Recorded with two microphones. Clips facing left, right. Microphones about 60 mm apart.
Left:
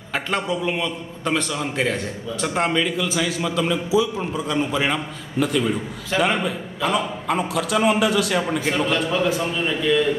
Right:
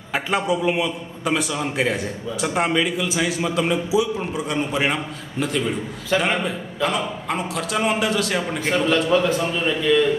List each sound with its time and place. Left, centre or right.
0.1 s a man's voice: centre
5.4 s a man's voice: centre